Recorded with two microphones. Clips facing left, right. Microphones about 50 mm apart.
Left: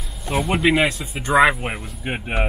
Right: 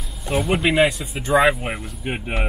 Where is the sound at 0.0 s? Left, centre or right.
Centre.